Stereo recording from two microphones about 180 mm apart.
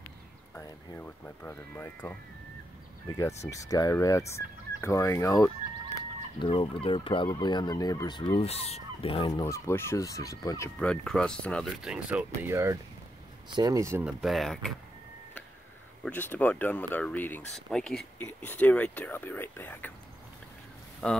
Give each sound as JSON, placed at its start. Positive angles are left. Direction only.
{"t": 0.6, "sound": "speech", "side_deg": 10}
{"t": 3.4, "sound": "fowl", "side_deg": 20}
{"t": 4.8, "sound": "speech", "side_deg": 15}
{"t": 6.4, "sound": "fowl", "side_deg": 30}
{"t": 9.3, "sound": "speech", "side_deg": 15}
{"t": 10.8, "sound": "speech", "side_deg": 5}
{"t": 14.0, "sound": "speech", "side_deg": 0}
{"t": 16.0, "sound": "speech", "side_deg": 10}
{"t": 21.0, "sound": "speech", "side_deg": 5}